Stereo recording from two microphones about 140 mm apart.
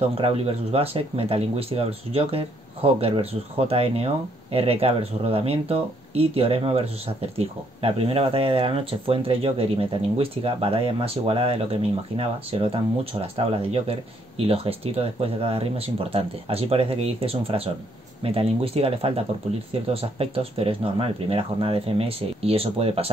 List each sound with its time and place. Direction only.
0.1 s speech: 45° right (ahead or behind)